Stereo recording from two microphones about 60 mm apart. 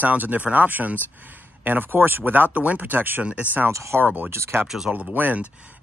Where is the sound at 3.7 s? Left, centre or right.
Right.